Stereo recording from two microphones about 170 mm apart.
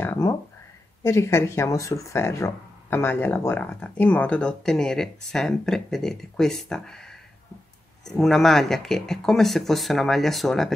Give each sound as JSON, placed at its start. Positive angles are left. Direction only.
{"t": 0.0, "sound": "speech", "side_deg": 15}